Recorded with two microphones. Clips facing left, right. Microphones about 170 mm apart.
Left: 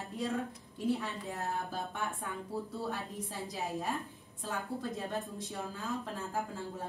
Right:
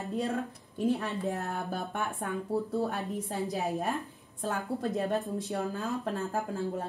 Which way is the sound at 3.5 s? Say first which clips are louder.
Right 4 dB; 65° right (ahead or behind).